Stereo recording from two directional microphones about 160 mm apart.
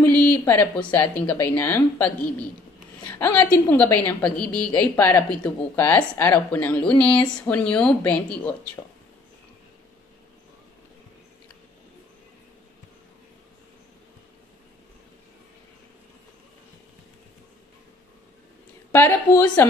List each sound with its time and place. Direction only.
0.0 s a woman's voice: 10° left (ahead or behind)
3.2 s a woman's voice: 15° left (ahead or behind)
18.9 s a woman's voice: 15° left (ahead or behind)